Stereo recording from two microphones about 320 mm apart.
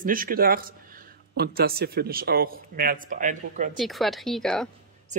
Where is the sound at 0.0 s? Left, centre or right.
Right.